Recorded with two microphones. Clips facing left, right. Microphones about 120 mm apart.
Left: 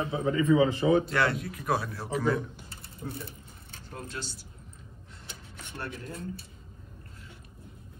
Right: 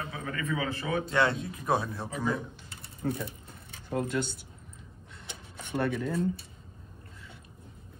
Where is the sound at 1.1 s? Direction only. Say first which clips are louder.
Right 1 dB; 25° right (ahead or behind).